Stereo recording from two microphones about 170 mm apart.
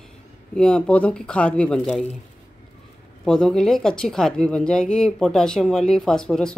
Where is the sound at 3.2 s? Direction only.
5° left (ahead or behind).